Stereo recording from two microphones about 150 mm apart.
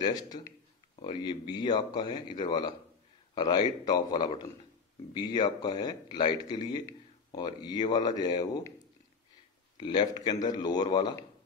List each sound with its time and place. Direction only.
0.9 s a man's voice: 30° left (ahead or behind)
9.8 s a man's voice: 30° left (ahead or behind)